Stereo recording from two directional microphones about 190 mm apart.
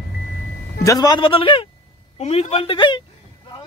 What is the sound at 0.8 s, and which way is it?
A man's voice, 20° left (ahead or behind).